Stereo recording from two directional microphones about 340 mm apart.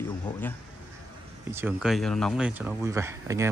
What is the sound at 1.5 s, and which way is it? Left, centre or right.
Speech, centre.